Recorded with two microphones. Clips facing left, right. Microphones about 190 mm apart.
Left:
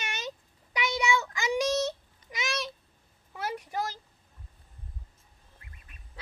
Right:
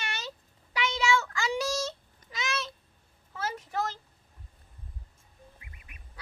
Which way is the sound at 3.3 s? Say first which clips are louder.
Even; 15° left (ahead or behind).